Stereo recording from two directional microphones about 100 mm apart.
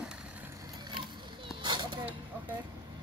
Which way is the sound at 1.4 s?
55° right (ahead or behind).